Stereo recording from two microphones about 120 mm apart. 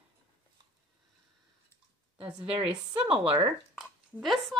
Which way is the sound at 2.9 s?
50° right (ahead or behind).